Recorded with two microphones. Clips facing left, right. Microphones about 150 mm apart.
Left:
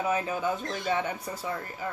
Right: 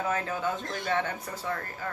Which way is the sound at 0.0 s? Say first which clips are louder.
Left 2 dB; 15° left (ahead or behind).